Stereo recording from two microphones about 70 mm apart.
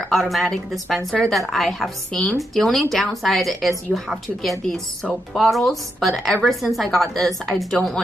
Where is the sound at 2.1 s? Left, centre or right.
Centre.